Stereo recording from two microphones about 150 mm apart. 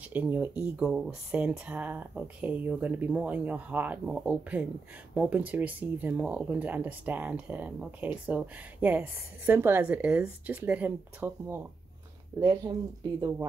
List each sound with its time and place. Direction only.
0.1 s speech: 10° right (ahead or behind)